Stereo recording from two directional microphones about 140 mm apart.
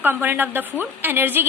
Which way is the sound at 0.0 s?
15° right (ahead or behind).